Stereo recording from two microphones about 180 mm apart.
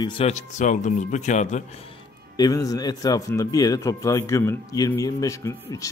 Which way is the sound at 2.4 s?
20° left (ahead or behind).